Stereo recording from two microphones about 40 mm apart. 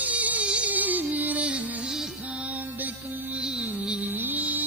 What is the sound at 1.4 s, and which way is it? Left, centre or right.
Music, right.